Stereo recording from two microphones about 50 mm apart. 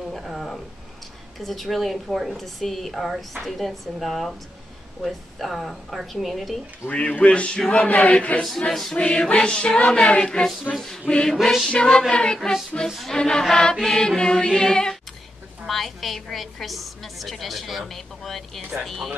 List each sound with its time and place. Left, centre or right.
0.1 s a sound: centre
1.4 s a woman's voice: centre
6.9 s male singing: left
8.4 s chant: centre
8.9 s male singing: left
9.8 s chant: centre
11.4 s a woman's voice: centre
11.7 s chant: centre
12.8 s chant: centre
15.6 s a woman's voice: centre